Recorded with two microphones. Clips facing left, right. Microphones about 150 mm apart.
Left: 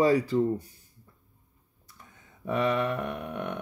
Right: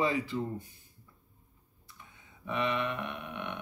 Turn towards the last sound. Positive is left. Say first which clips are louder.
# left 6 dB
turn(degrees=45)  # may be behind; listen again after turning